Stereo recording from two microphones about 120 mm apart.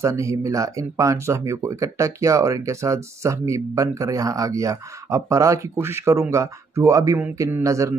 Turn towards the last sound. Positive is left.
turn(degrees=-25)  # may be behind; listen again after turning